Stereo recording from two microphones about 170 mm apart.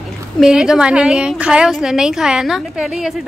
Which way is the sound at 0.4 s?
5° right (ahead or behind).